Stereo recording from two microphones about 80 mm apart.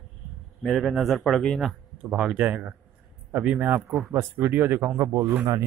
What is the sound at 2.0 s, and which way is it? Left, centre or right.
Speech, centre.